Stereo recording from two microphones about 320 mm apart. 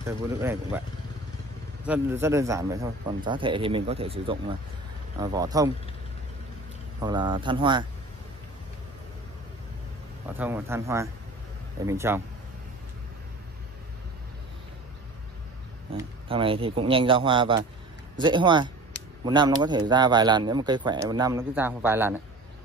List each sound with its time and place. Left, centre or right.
0.0 s speech: centre
1.9 s speech: centre
7.0 s speech: centre
10.2 s speech: centre
15.9 s speech: centre